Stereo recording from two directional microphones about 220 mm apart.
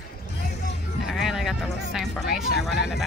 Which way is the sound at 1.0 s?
Centre (ahead or behind).